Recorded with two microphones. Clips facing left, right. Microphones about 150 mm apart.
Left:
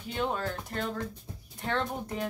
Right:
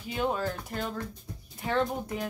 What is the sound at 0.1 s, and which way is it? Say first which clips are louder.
Speech: right 2 dB; 5° right (ahead or behind).